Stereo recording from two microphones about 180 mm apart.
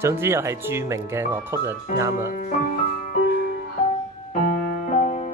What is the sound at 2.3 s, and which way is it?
Speech, 45° left (ahead or behind).